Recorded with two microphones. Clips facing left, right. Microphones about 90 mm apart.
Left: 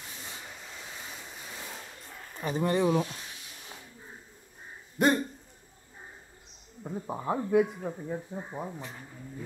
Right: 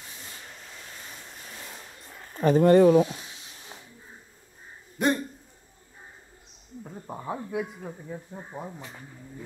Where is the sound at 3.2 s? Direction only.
25° right (ahead or behind).